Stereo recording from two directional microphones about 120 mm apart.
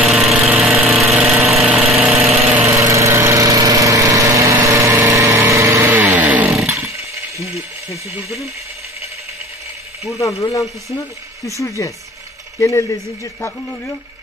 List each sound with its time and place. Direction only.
0.0 s engine: centre (ahead or behind)
2.8 s vehicle: 25° right (ahead or behind)
5.5 s chainsaw: 25° right (ahead or behind)
10.1 s speech: 25° left (ahead or behind)